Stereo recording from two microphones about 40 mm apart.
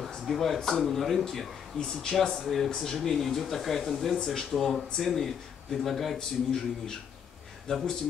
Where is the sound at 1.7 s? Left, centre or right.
Centre.